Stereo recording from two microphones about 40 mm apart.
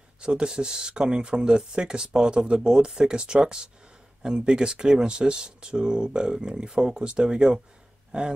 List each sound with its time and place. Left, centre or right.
0.2 s speech: right